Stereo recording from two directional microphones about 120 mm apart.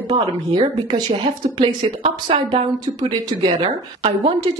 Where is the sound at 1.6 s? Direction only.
50° right (ahead or behind).